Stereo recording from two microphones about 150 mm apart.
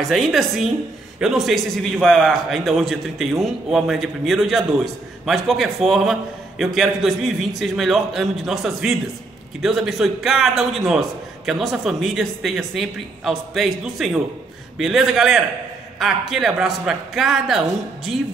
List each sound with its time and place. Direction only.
0.1 s a man's voice: centre (ahead or behind)